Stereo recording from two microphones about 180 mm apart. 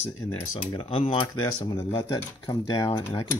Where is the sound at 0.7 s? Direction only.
30° left (ahead or behind).